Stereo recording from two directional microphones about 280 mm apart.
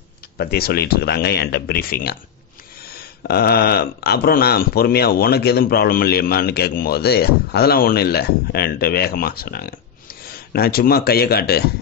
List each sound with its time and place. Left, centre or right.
0.4 s speech: left